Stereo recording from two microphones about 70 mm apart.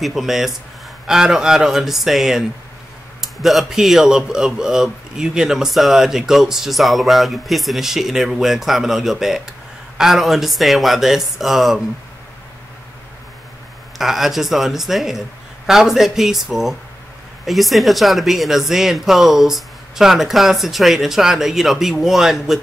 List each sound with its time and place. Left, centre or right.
0.0 s a man's voice: centre
13.9 s a man's voice: centre